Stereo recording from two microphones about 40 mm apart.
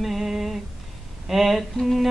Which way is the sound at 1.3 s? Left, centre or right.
Centre.